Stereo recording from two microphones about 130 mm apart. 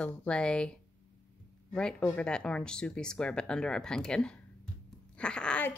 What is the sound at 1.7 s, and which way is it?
Speech, 5° left (ahead or behind).